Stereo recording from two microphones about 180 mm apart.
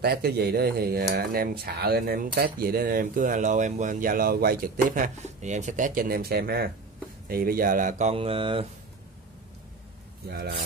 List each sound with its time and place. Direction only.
0.0 s speech: 60° right (ahead or behind)
8.1 s mantra: 30° right (ahead or behind)
10.2 s speech: 60° right (ahead or behind)